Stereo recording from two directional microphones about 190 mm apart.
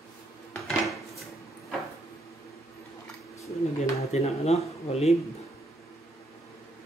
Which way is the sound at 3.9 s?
35° left (ahead or behind).